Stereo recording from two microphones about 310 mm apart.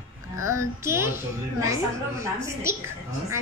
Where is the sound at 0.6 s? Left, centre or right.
Centre.